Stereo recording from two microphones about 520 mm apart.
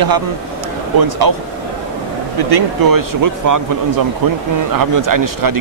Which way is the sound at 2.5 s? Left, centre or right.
Right.